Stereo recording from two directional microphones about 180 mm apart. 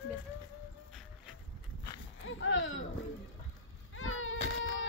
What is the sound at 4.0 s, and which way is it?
Baby cry, 90° left.